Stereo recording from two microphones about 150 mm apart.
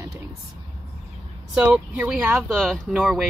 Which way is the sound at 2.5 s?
Centre (ahead or behind).